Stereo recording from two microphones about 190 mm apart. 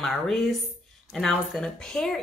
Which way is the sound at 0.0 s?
Centre (ahead or behind).